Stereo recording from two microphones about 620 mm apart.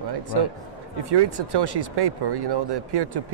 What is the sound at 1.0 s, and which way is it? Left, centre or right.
Speech, right.